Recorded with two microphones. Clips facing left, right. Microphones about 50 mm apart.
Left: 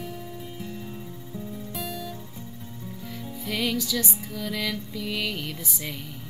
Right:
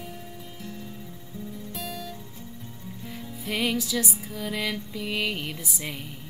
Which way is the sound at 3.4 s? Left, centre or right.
Centre.